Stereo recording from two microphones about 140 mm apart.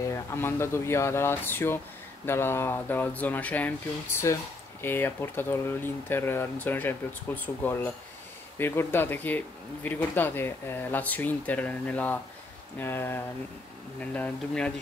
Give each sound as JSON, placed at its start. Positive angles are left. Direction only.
{"t": 0.0, "sound": "speech", "side_deg": 20}